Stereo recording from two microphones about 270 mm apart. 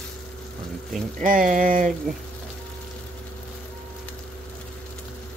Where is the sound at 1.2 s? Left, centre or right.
Right.